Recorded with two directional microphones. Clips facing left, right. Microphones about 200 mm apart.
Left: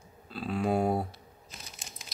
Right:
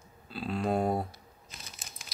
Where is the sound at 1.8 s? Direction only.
25° left (ahead or behind).